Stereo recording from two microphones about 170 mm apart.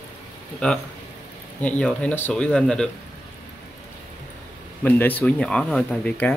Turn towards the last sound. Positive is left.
turn(degrees=10)  # may be behind; listen again after turning